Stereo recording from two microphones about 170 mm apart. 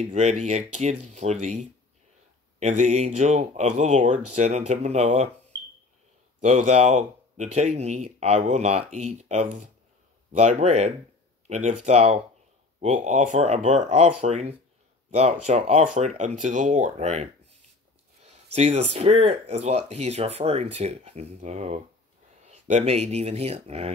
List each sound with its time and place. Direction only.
0.0 s speech: 40° right (ahead or behind)
6.4 s speech: 45° right (ahead or behind)